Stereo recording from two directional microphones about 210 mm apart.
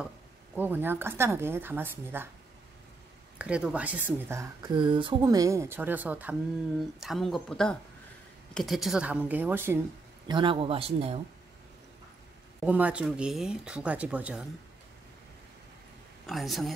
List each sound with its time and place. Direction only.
0.6 s speech: 10° right (ahead or behind)
3.3 s speech: 5° right (ahead or behind)
10.2 s speech: 25° right (ahead or behind)
12.6 s speech: 5° right (ahead or behind)
16.3 s speech: centre (ahead or behind)